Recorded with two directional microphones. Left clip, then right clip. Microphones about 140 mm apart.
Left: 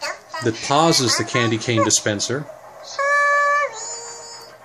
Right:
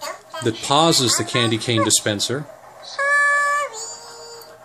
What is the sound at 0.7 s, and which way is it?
Speech, 10° right (ahead or behind).